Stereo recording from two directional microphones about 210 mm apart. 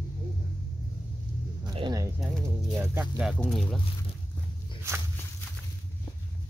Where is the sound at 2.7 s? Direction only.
5° right (ahead or behind).